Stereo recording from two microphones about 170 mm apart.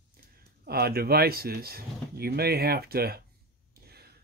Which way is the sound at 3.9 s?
70° right (ahead or behind).